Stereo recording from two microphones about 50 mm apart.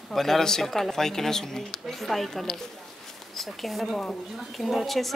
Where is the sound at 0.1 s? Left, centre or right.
Centre.